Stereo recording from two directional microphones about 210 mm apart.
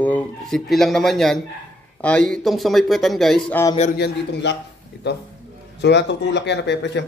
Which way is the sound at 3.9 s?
55° left (ahead or behind).